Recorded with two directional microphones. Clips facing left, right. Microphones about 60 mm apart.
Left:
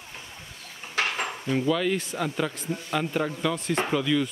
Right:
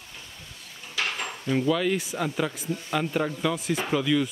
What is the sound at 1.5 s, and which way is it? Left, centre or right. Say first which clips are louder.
A man's voice: right 1 dB; centre.